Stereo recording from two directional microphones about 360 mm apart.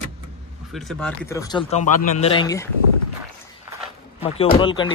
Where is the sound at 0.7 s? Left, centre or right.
Centre.